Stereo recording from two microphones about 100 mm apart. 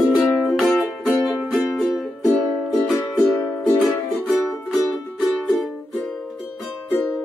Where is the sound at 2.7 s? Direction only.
20° left (ahead or behind).